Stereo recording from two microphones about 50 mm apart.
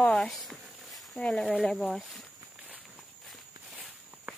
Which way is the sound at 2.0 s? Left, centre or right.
Centre.